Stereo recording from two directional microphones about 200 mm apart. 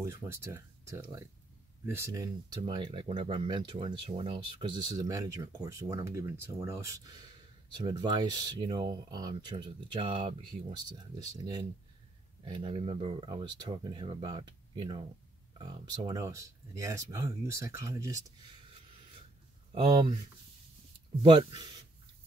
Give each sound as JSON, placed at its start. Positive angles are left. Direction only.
{"t": 0.0, "sound": "speech", "side_deg": -15}
{"t": 19.7, "sound": "speech", "side_deg": -25}
{"t": 21.2, "sound": "speech", "side_deg": -25}